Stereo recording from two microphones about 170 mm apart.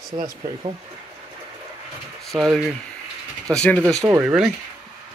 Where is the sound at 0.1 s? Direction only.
25° right (ahead or behind).